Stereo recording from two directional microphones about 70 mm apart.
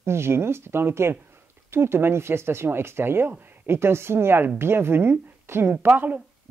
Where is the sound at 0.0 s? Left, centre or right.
Right.